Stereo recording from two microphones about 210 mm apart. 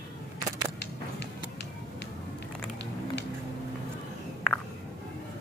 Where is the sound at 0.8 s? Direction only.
55° left (ahead or behind).